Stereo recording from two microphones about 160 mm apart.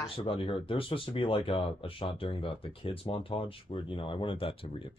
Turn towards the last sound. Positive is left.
turn(degrees=35)  # may be behind; listen again after turning